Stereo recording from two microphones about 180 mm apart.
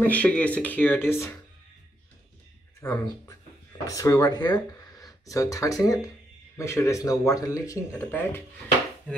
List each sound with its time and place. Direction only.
0.0 s speech: 10° left (ahead or behind)
3.8 s speech: 20° left (ahead or behind)
4.7 s a sound: 20° left (ahead or behind)
6.5 s speech: 15° left (ahead or behind)